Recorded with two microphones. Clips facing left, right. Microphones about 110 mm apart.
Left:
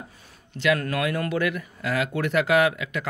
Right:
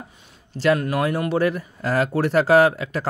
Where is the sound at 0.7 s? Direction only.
25° right (ahead or behind).